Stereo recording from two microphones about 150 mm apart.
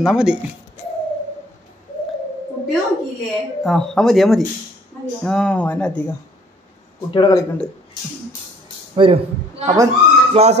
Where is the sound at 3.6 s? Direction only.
5° left (ahead or behind).